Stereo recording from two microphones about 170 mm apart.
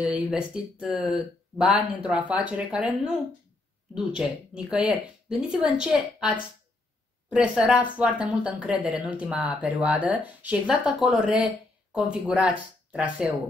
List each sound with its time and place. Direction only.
0.0 s a woman's voice: 5° right (ahead or behind)